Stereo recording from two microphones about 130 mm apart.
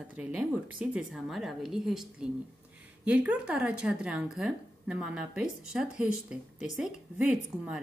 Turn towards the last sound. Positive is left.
turn(degrees=-5)  # may be behind; listen again after turning